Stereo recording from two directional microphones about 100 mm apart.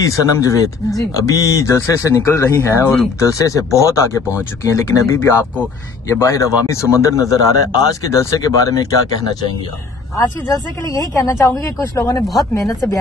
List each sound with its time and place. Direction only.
0.0 s speech: 35° left (ahead or behind)